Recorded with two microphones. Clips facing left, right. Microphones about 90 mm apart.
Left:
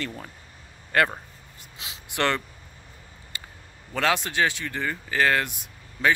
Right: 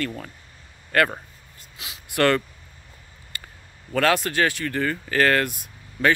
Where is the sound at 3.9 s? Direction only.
20° left (ahead or behind).